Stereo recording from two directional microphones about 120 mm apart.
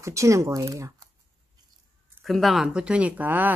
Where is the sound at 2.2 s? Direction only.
Centre (ahead or behind).